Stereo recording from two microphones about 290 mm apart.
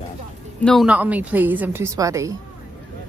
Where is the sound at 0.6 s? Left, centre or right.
Centre.